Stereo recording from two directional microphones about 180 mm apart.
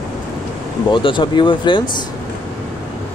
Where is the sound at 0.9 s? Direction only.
25° left (ahead or behind).